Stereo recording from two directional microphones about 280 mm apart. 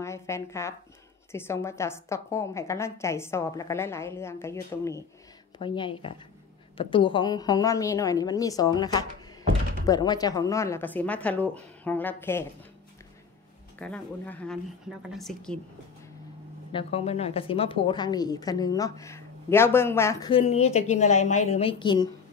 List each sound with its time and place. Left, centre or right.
0.0 s a woman's voice: centre
13.7 s speech: centre
16.7 s a woman's voice: left